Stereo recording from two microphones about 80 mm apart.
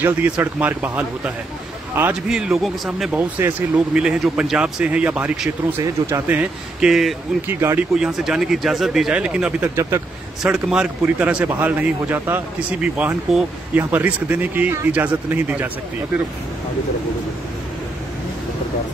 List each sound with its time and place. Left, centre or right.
0.0 s a man's voice: right
2.2 s speech: centre
3.2 s a man's voice: right
3.9 s a man's voice: centre
6.8 s speech: centre
7.4 s a man's voice: right
7.9 s speech: centre
9.8 s speech: right
10.4 s speech: centre
11.1 s a man's voice: centre
12.5 s speech: centre
13.3 s speech: centre
13.7 s a man's voice: right